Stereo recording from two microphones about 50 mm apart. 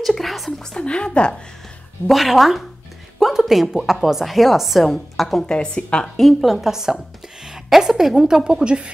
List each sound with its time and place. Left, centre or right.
0.0 s a sound: centre
0.5 s speech: centre
2.0 s a woman's voice: centre
5.4 s a woman's voice: centre
6.1 s a woman's voice: centre